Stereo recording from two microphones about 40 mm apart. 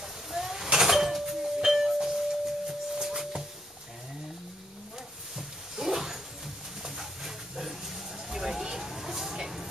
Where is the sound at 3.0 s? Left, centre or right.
Centre.